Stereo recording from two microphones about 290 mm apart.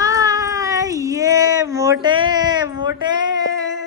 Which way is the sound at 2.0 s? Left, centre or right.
Centre.